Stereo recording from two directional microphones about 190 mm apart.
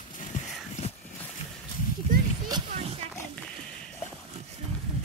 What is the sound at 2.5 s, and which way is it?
Music, 25° right (ahead or behind).